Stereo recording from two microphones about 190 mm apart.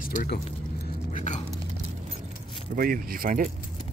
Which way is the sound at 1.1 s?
40° left (ahead or behind).